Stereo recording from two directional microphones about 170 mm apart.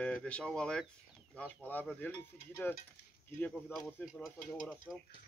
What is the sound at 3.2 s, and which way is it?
Speech, 10° left (ahead or behind).